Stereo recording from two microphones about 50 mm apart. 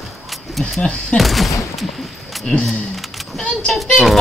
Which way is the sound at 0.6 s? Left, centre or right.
Centre.